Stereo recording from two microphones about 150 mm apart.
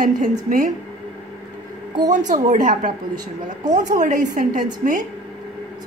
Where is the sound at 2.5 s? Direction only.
55° right (ahead or behind).